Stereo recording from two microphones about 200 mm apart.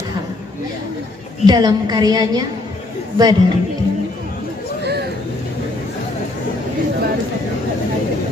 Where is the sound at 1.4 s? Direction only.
20° right (ahead or behind).